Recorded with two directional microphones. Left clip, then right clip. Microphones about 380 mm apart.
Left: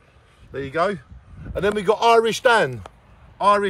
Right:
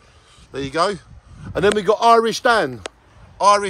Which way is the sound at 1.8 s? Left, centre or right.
Centre.